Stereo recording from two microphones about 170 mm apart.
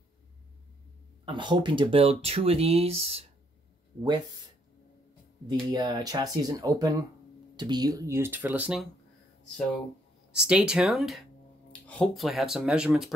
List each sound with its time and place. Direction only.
1.2 s speech: 30° right (ahead or behind)
5.5 s speech: 25° right (ahead or behind); by 8.8 s 5° right (ahead or behind)
10.3 s speech: 5° right (ahead or behind)